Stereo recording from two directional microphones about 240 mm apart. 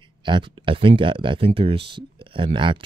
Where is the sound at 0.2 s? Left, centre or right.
Centre.